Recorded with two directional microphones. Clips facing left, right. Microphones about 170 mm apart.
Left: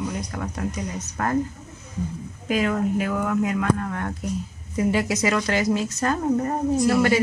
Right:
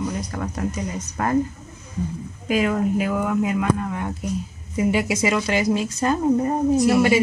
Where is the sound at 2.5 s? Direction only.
10° right (ahead or behind).